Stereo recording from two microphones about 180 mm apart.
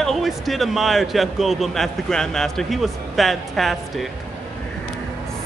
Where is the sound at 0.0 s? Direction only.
Centre (ahead or behind).